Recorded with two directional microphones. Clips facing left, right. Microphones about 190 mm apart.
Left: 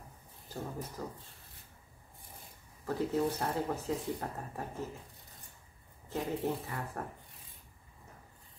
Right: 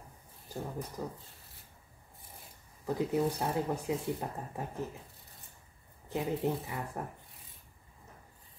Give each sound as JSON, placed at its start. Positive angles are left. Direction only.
{"t": 0.5, "sound": "speech", "side_deg": -15}
{"t": 3.2, "sound": "speech", "side_deg": -10}
{"t": 6.0, "sound": "speech", "side_deg": -15}